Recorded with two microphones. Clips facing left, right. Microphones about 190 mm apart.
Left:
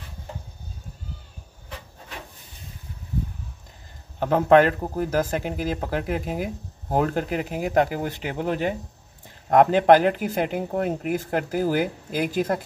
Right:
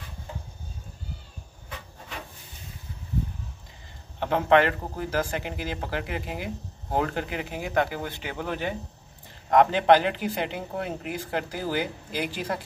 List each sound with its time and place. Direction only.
4.2 s a man's voice: 40° left (ahead or behind)